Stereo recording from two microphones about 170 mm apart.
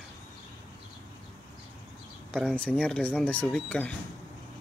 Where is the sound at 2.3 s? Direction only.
5° left (ahead or behind).